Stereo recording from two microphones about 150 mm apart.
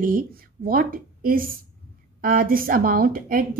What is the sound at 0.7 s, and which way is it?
A woman's voice, 75° right (ahead or behind).